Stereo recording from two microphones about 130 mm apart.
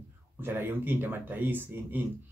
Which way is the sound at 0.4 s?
15° right (ahead or behind).